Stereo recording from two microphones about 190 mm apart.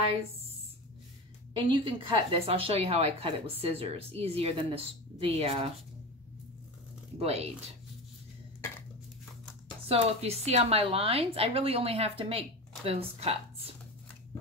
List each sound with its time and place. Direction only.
1.7 s speech: 25° right (ahead or behind)
7.2 s speech: 35° right (ahead or behind)
9.8 s speech: 30° right (ahead or behind)